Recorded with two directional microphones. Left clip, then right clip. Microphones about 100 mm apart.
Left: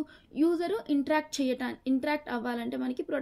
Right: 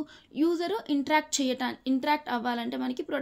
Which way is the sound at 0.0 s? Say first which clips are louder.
Even; 20° right (ahead or behind).